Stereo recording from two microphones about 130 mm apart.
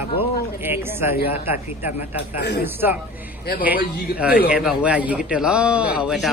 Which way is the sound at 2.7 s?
15° right (ahead or behind).